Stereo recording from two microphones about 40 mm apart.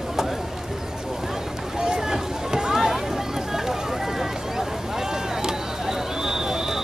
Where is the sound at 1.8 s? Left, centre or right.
Centre.